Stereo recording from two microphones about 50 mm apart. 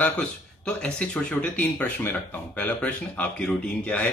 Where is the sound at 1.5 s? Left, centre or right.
Left.